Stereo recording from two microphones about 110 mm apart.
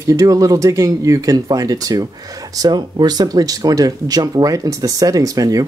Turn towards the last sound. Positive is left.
turn(degrees=-35)  # may be behind; listen again after turning